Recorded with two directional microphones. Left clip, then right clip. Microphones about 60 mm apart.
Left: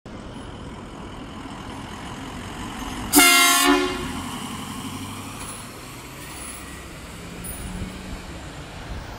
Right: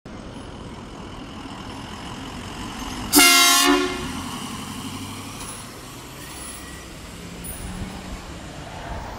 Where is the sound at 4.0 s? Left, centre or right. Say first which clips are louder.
Even; left.